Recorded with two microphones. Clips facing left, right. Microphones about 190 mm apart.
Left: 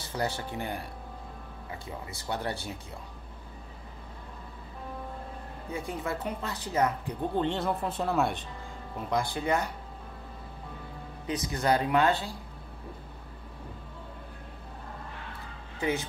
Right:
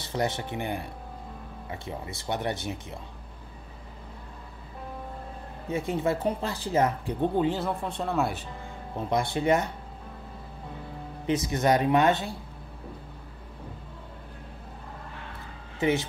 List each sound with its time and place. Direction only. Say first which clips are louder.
0.0 s speech: right 3 dB; 20° right (ahead or behind)
1.9 s speech: right 3 dB; 25° right (ahead or behind)
5.7 s speech: right 7 dB; 25° right (ahead or behind)
7.3 s speech: right 2 dB; 5° right (ahead or behind)
8.9 s speech: right 3 dB; 25° right (ahead or behind)
11.2 s speech: right 4 dB; 25° right (ahead or behind)
15.8 s speech: right 5 dB; 25° right (ahead or behind)